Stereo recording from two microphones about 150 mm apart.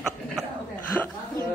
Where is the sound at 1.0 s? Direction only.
10° left (ahead or behind).